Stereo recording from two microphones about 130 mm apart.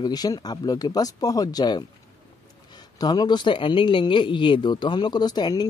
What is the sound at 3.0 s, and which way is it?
Speech, 30° left (ahead or behind).